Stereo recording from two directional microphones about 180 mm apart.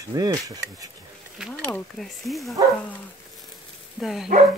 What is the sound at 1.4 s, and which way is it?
Speech, 5° right (ahead or behind).